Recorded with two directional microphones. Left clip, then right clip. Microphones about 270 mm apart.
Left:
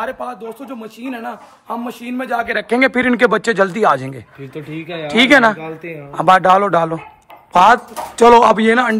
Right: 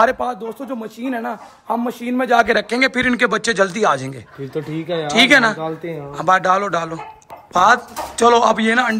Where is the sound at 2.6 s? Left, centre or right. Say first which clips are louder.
Left 3 dB; centre.